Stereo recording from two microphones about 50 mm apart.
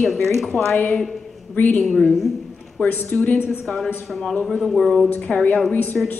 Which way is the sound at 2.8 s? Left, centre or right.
Left.